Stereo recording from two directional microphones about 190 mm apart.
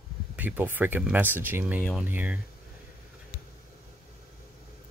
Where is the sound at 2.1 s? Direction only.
10° right (ahead or behind).